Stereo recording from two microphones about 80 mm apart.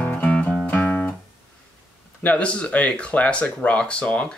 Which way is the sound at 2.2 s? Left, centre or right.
Centre.